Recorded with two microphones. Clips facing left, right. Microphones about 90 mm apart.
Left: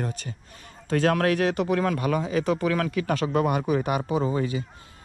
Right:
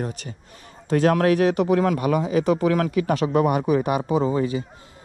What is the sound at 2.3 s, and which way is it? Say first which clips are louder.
Speech: right 5 dB; 25° right (ahead or behind).